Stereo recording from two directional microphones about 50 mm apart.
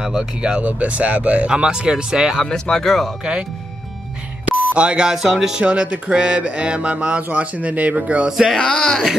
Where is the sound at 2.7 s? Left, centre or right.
Centre.